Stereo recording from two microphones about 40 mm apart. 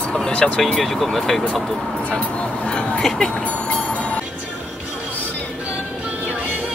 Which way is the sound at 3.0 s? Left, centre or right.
Centre.